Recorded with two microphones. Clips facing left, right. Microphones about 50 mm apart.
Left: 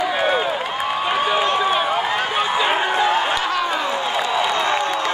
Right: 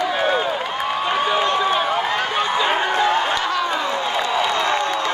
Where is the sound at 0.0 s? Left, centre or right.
Centre.